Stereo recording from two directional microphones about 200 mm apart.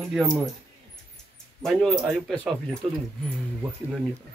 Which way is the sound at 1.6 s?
Centre (ahead or behind).